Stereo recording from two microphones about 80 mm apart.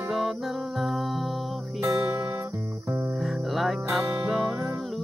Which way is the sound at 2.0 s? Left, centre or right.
Right.